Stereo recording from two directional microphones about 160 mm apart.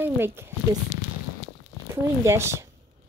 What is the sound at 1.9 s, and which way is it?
Speech, 15° right (ahead or behind).